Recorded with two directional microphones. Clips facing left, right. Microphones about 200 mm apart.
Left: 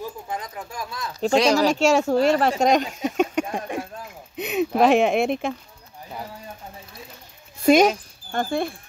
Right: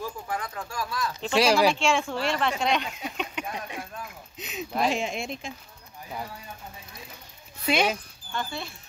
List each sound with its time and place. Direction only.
0.0 s a sound: 20° left (ahead or behind)
1.4 s speech: 10° right (ahead or behind)
1.7 s speech: 40° left (ahead or behind)
4.4 s a sound: 65° left (ahead or behind)
4.8 s speech: 65° left (ahead or behind)
7.6 s speech: 45° left (ahead or behind)